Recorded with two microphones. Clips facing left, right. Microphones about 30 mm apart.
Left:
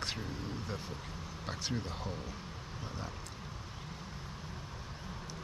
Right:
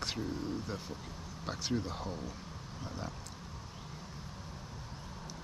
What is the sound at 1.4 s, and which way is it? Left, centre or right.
Speech, centre.